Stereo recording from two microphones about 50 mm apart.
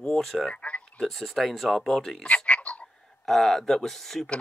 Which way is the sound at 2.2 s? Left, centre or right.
Left.